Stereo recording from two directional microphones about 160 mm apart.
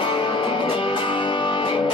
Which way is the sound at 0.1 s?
30° left (ahead or behind).